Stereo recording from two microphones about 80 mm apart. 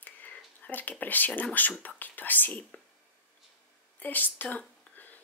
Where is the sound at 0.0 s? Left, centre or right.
Left.